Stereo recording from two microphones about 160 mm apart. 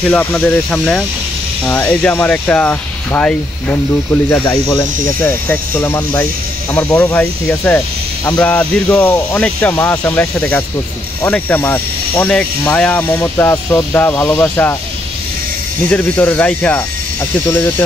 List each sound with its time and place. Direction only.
0.1 s speech: 10° left (ahead or behind)
15.9 s speech: 10° left (ahead or behind)